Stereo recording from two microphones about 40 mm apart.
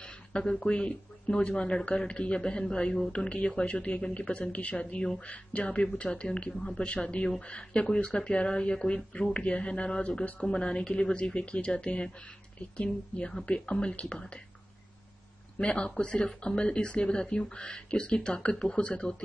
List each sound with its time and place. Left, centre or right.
0.0 s speech: left
5.8 s speech: left
10.4 s speech: left
15.6 s speech: left